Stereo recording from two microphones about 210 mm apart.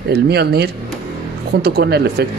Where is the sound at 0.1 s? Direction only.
50° right (ahead or behind).